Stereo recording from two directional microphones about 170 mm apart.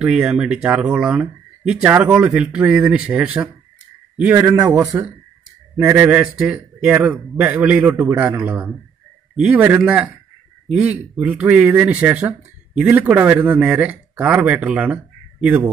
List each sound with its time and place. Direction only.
0.0 s speech: 5° right (ahead or behind)
5.8 s speech: 10° right (ahead or behind)